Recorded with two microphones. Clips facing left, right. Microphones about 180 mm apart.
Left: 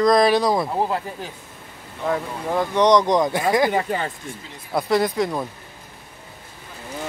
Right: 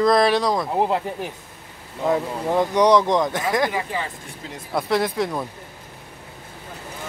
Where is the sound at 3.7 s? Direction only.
55° left (ahead or behind).